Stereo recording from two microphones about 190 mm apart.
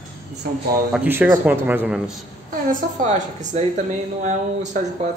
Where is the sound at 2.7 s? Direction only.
40° right (ahead or behind).